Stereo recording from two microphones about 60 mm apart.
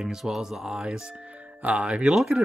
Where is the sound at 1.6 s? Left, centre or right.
Right.